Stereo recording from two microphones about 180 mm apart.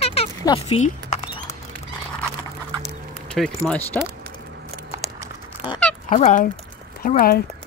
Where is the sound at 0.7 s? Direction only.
40° left (ahead or behind).